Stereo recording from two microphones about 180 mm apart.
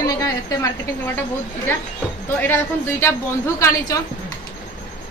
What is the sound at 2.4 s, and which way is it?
A woman's voice, 15° left (ahead or behind).